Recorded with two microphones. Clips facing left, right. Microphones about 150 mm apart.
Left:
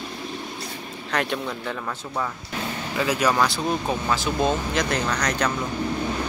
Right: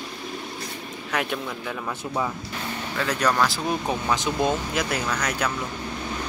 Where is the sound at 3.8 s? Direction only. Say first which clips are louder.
Even; 20° right (ahead or behind).